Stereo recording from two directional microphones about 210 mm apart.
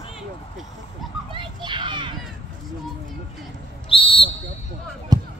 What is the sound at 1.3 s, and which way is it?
Children playing, 20° right (ahead or behind).